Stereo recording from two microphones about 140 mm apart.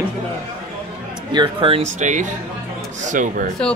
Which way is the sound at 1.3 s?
40° right (ahead or behind).